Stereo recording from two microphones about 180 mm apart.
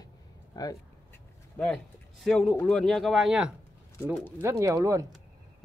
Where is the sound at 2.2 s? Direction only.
Centre (ahead or behind).